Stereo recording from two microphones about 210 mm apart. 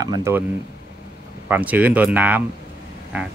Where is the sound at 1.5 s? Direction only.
5° right (ahead or behind).